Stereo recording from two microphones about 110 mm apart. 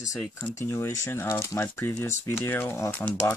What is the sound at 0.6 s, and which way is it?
Speech, 25° left (ahead or behind).